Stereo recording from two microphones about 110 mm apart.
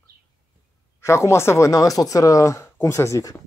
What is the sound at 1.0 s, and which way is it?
Speech, 25° left (ahead or behind).